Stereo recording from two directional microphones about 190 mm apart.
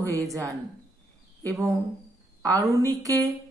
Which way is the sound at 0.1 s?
15° right (ahead or behind).